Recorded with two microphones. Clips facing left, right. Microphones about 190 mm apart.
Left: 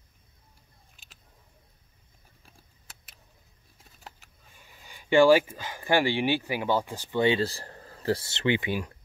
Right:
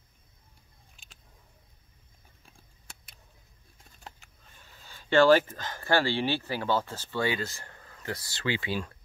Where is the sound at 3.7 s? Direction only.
5° left (ahead or behind).